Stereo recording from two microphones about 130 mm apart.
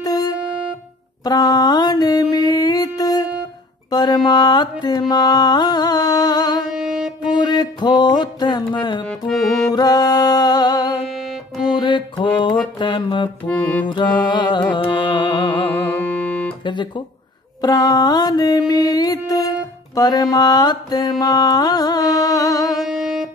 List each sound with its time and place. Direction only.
0.0 s music: 30° left (ahead or behind)
1.2 s mantra: 30° left (ahead or behind)
6.7 s music: 5° right (ahead or behind)
7.2 s a sound: 35° left (ahead or behind)
9.3 s music: centre (ahead or behind)
9.7 s music: 30° left (ahead or behind)
11.7 s mantra: 35° left (ahead or behind)
13.5 s music: 10° left (ahead or behind)
14.2 s music: 35° left (ahead or behind)
15.7 s music: 15° left (ahead or behind)
17.6 s mantra: 30° left (ahead or behind)
22.8 s music: 5° right (ahead or behind)